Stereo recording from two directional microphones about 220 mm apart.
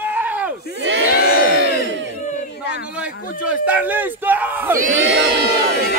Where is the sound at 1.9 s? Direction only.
55° right (ahead or behind).